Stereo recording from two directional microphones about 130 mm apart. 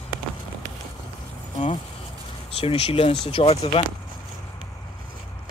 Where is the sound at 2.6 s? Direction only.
45° left (ahead or behind).